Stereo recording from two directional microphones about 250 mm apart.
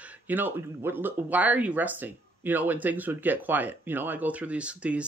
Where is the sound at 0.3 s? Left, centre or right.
Centre.